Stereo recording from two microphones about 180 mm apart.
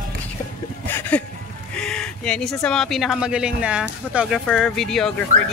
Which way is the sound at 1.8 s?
5° left (ahead or behind).